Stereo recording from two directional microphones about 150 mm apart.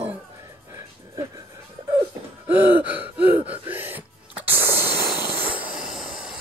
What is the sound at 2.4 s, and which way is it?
Gasp, 10° right (ahead or behind).